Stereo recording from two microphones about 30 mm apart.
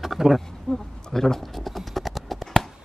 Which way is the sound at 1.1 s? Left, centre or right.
Centre.